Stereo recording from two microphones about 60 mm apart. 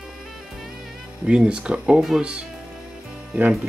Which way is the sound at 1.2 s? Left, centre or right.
Centre.